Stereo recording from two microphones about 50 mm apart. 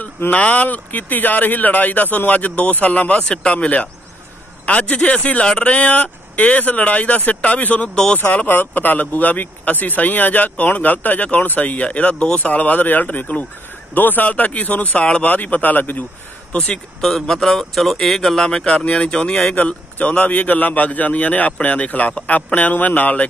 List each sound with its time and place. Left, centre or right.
0.3 s speech: left
8.5 s speech: left
15.2 s speech: left
16.5 s speech: centre
17.0 s speech: centre
19.5 s speech: left